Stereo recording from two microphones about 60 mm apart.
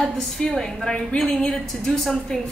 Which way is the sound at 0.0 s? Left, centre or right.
Centre.